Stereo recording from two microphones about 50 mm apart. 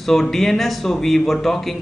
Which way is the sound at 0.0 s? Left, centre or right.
Centre.